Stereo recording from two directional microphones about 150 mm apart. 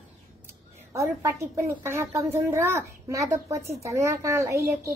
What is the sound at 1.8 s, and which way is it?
A child's voice, 15° right (ahead or behind).